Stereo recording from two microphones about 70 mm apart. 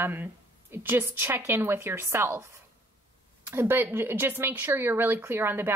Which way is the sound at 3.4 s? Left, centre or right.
Right.